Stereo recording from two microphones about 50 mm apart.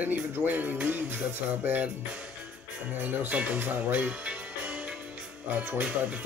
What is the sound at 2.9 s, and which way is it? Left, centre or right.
Speech, right.